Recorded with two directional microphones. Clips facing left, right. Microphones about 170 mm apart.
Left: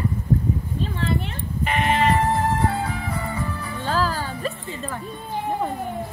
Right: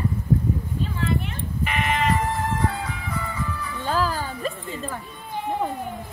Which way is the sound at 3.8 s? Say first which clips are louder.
Even; 10° right (ahead or behind).